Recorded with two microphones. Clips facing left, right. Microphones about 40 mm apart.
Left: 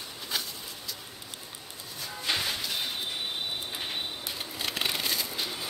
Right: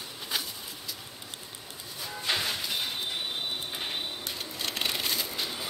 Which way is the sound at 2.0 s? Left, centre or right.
Centre.